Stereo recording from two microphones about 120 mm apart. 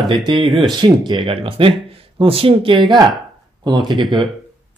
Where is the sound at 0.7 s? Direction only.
40° right (ahead or behind).